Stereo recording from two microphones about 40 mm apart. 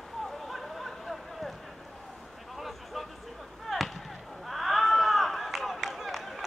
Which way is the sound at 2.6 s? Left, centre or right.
Centre.